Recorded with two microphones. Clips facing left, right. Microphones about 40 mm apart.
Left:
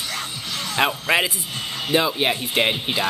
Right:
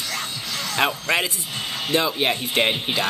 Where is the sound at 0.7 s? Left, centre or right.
Centre.